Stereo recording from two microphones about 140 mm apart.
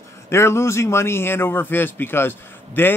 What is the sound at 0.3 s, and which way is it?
A man's voice, 20° left (ahead or behind).